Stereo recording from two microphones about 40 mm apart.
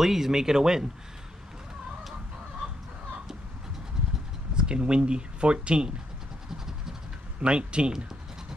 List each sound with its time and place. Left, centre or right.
0.0 s speech: centre
4.6 s speech: right
7.3 s speech: right